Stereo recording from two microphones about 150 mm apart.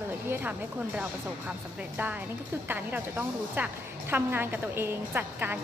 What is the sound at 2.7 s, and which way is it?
A woman's voice, 10° right (ahead or behind).